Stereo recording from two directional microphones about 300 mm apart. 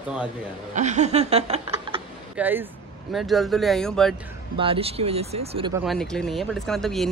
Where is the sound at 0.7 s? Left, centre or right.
Right.